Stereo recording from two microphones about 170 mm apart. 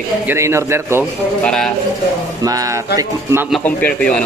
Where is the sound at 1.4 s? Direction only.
5° left (ahead or behind).